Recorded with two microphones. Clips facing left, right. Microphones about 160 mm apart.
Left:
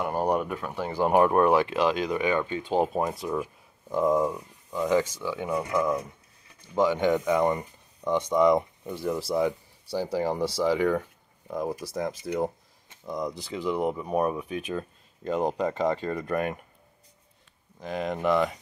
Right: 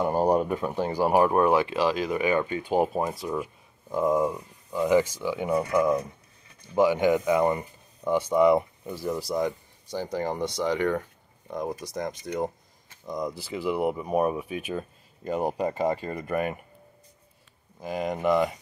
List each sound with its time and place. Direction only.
0.2 s a sound: 30° right (ahead or behind)
0.6 s speech: 20° right (ahead or behind)
1.0 s speech: 5° right (ahead or behind)
17.7 s speech: 5° right (ahead or behind)